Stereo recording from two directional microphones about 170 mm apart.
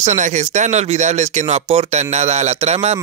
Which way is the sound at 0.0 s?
45° right (ahead or behind).